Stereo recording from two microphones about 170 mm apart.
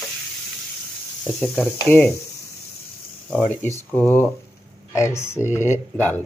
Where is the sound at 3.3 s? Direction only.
10° left (ahead or behind).